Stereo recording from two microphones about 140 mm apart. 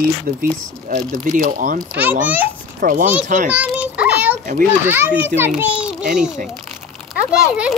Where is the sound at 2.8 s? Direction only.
80° right.